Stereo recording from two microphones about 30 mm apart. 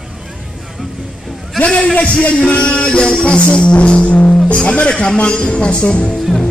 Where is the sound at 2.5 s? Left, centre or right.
Left.